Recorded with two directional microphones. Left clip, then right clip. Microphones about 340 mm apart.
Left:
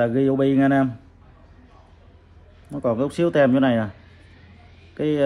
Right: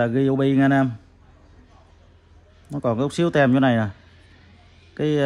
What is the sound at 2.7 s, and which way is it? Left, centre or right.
Speech, right.